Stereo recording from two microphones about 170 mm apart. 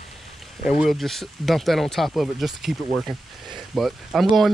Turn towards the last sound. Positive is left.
turn(degrees=0)  # may be behind; listen again after turning